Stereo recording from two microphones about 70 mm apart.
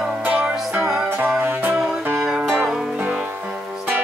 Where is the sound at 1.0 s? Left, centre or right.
Right.